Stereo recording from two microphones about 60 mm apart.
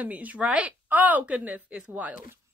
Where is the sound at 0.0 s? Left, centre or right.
Right.